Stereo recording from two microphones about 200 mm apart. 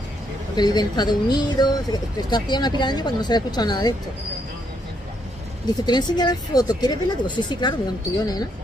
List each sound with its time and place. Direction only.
0.6 s speech: 20° left (ahead or behind)
5.9 s speech: 20° left (ahead or behind)